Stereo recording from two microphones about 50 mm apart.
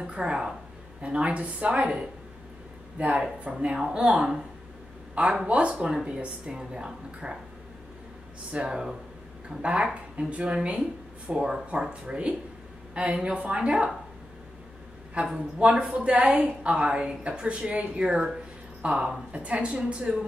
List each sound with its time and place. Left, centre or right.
0.0 s a woman's voice: centre
3.0 s speech: right
3.6 s a woman's voice: centre
8.5 s a woman's voice: centre
15.3 s a woman's voice: right